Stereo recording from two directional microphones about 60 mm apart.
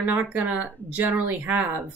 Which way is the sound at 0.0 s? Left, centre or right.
Right.